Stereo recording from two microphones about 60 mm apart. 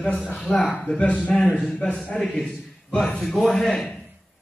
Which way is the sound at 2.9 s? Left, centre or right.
Centre.